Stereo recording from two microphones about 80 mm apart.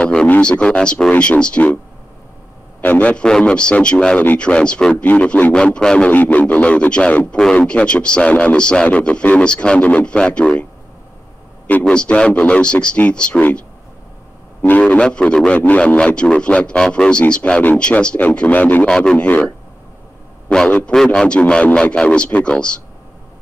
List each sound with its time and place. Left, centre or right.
0.0 s a sound: centre
0.4 s speech: centre
2.8 s speech: centre
11.8 s speech: centre
14.7 s speech: centre
18.9 s speech: centre
20.5 s speech: centre